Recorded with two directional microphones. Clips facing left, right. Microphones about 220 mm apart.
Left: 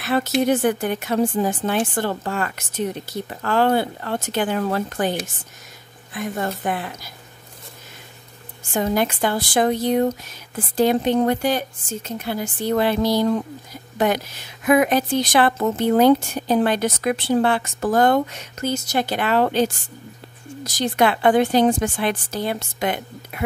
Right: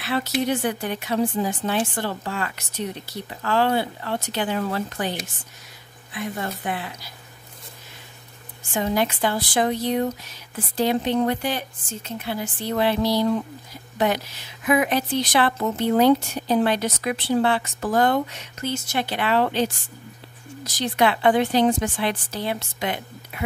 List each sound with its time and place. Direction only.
0.0 s speech: 45° left (ahead or behind)
6.1 s speech: 45° left (ahead or behind)
8.7 s speech: 45° left (ahead or behind)